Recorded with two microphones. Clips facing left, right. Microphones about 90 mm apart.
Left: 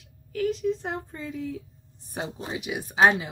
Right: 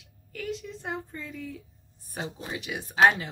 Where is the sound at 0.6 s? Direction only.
25° left (ahead or behind).